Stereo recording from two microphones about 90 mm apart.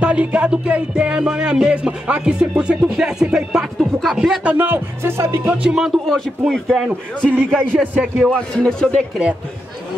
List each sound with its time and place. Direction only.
0.0 s music: 15° right (ahead or behind)
4.4 s music: 15° right (ahead or behind)
5.5 s speech: 10° right (ahead or behind); by 6.9 s 5° left (ahead or behind)
7.8 s music: 15° right (ahead or behind)
8.3 s speech: 10° left (ahead or behind)